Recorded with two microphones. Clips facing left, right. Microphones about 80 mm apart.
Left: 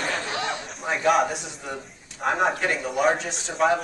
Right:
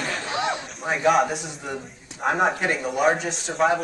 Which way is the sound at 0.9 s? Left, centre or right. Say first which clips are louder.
Right 1 dB; centre.